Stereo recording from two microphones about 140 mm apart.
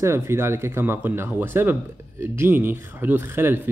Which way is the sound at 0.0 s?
20° right (ahead or behind).